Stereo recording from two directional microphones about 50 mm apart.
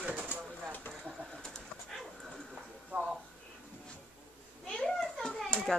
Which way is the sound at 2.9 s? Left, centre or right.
Right.